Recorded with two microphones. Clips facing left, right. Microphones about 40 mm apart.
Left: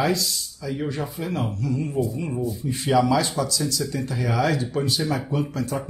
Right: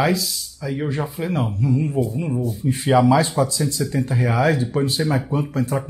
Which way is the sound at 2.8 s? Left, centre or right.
Right.